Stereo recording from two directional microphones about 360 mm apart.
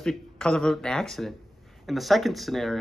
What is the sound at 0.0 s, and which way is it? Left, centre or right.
Speech, centre.